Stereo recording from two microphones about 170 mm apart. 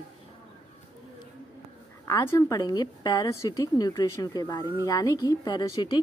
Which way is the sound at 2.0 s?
15° left (ahead or behind).